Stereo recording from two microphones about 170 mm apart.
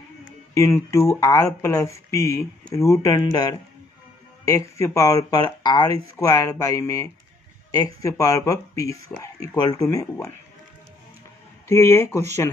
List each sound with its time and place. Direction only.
0.6 s speech: 15° left (ahead or behind)
11.6 s speech: 15° left (ahead or behind)